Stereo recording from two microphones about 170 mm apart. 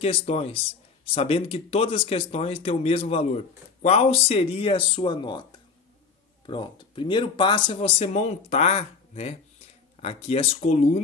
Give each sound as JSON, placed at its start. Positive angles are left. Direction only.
{"t": 0.0, "sound": "speech", "side_deg": 35}
{"t": 6.4, "sound": "speech", "side_deg": 30}